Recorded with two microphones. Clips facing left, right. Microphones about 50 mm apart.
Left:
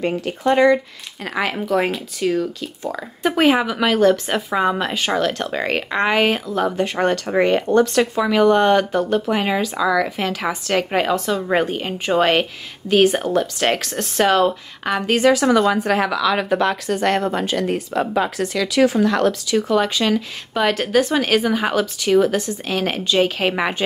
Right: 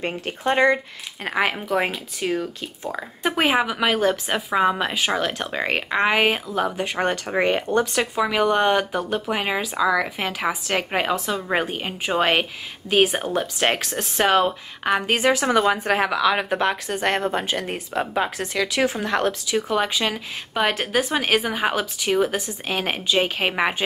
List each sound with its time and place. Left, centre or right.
0.5 s speech: right
1.7 s a woman's voice: centre
2.1 s speech: right
3.2 s a woman's voice: centre; by 19.3 s right
19.5 s a woman's voice: centre